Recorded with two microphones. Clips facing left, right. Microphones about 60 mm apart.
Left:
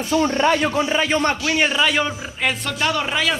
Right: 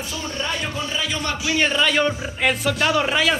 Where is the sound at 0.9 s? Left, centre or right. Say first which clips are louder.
Left 6 dB; left.